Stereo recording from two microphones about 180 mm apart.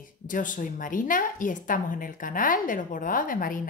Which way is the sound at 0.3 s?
45° left (ahead or behind).